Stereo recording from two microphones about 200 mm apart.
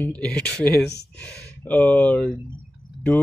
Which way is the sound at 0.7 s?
55° left (ahead or behind).